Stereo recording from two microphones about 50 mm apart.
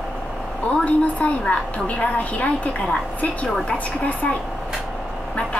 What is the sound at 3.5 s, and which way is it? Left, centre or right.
Speech, centre.